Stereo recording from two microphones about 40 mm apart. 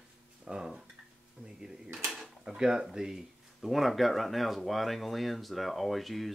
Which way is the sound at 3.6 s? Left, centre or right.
Centre.